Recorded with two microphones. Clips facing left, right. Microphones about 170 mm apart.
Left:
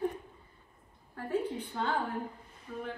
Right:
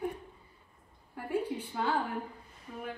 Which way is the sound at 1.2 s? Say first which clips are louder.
Even; 10° right (ahead or behind).